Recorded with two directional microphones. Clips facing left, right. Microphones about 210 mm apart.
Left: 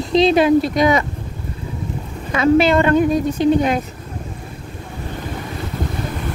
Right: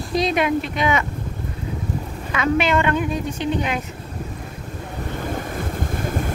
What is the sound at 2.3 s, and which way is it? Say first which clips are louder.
A woman's voice: left 6 dB; 35° left (ahead or behind).